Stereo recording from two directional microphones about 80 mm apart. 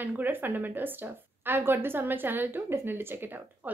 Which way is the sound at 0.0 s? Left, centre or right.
Right.